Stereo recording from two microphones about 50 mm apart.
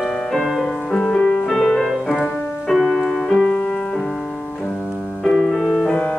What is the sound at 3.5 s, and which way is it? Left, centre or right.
Music, left.